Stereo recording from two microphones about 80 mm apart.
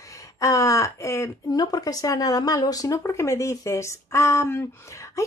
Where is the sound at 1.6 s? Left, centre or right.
Left.